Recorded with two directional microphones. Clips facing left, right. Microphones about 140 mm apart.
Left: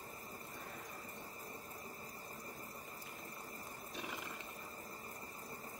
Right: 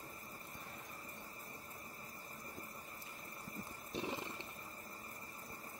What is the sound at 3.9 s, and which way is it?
Wild animals, 30° right (ahead or behind).